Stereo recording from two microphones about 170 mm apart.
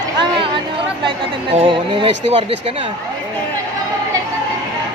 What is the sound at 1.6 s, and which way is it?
Speech, 30° right (ahead or behind).